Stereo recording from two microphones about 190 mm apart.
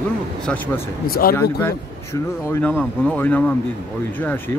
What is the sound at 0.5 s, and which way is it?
Speech, 5° left (ahead or behind).